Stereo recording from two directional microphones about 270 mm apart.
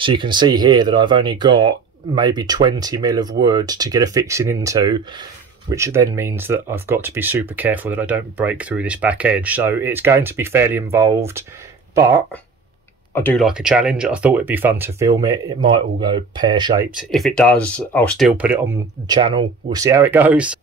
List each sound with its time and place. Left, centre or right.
0.0 s speech: centre
13.1 s speech: centre
17.1 s speech: centre
19.0 s speech: centre